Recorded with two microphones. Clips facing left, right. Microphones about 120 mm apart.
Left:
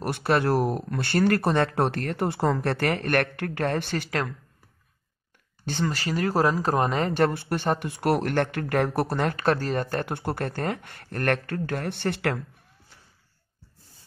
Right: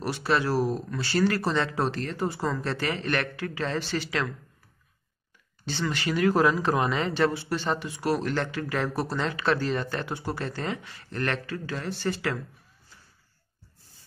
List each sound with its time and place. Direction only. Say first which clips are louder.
0.0 s speech: left 2 dB; 55° left (ahead or behind)
5.7 s speech: left 1 dB; 45° left (ahead or behind); by 12.4 s 60° left (ahead or behind)